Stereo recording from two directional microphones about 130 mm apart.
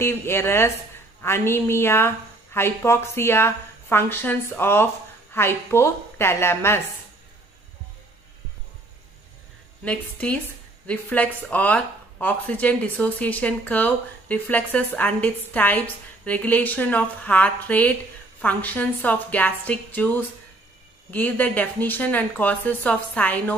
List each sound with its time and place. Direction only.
0.0 s a woman's voice: 20° left (ahead or behind)
9.8 s speech: 10° left (ahead or behind)